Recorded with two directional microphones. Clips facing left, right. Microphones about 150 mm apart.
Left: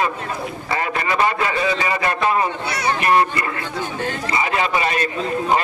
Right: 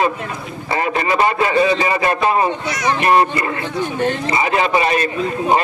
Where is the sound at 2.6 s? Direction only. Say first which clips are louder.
Right 2 dB; 30° left (ahead or behind).